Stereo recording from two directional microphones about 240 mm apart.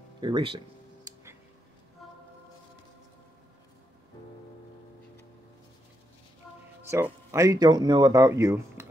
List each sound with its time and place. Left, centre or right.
0.2 s speech: centre
1.1 s music: centre
6.9 s speech: centre